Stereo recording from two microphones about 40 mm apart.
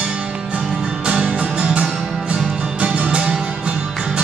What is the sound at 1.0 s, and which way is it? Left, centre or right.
Music, right.